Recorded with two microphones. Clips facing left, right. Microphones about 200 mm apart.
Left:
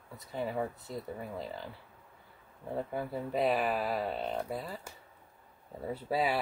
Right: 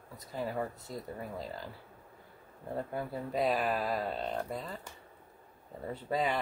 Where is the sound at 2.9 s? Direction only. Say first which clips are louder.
Left 1 dB; 5° left (ahead or behind).